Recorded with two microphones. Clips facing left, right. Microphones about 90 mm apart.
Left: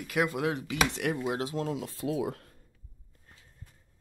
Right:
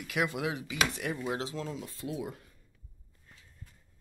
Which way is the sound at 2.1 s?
80° left.